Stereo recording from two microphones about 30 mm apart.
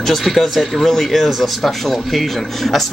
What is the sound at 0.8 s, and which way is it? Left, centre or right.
Speech, centre.